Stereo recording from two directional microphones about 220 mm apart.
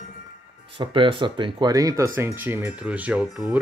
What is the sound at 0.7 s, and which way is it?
Speech, 25° right (ahead or behind).